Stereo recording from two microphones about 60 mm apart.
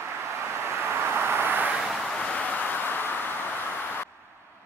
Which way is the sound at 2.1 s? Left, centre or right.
Centre.